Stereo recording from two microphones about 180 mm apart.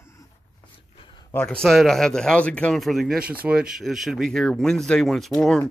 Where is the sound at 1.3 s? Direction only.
5° left (ahead or behind).